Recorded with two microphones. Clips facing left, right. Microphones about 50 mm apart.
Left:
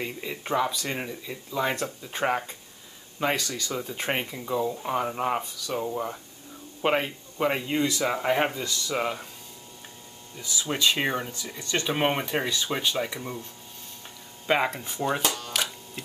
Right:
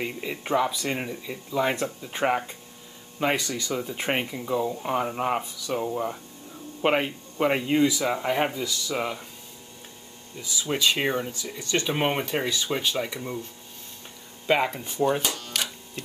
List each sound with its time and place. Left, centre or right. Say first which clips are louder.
0.0 s speech: right 2 dB; centre
8.1 s speech: even; centre
10.4 s speech: right 1 dB; centre
14.4 s speech: right 1 dB; centre
15.2 s a sound: left 2 dB; left